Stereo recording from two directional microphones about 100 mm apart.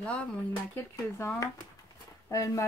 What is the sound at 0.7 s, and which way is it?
Speech, 25° left (ahead or behind).